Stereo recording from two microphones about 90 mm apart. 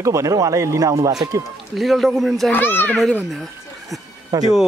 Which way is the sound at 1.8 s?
Centre (ahead or behind).